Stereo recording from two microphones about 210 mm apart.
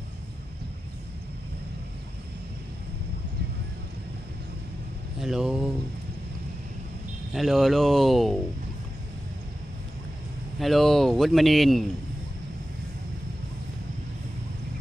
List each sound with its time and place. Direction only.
5.2 s speech: centre (ahead or behind)
7.3 s speech: centre (ahead or behind)
10.6 s speech: centre (ahead or behind)